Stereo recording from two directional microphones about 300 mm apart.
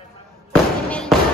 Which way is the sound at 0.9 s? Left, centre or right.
Centre.